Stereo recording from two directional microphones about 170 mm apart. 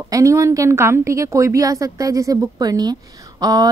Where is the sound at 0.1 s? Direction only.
20° right (ahead or behind).